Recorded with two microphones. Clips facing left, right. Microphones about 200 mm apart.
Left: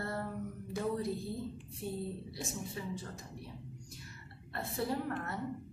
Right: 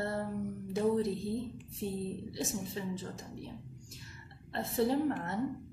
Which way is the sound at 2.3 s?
25° right (ahead or behind).